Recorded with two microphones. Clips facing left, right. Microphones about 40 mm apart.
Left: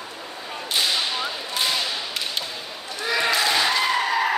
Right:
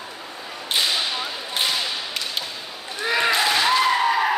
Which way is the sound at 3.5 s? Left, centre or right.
Centre.